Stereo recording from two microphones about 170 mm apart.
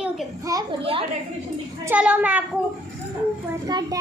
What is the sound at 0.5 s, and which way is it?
Speech, 20° right (ahead or behind).